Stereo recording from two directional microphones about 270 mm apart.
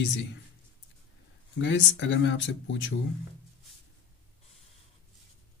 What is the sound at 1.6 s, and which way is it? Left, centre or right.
Speech, left.